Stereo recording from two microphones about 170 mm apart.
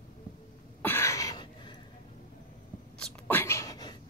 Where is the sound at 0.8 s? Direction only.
15° left (ahead or behind).